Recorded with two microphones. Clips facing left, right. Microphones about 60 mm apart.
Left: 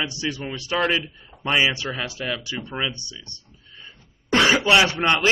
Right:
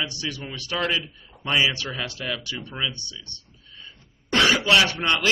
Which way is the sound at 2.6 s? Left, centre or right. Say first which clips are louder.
Left 2 dB; left.